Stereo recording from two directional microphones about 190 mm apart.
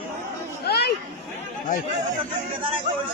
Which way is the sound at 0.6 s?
55° left (ahead or behind).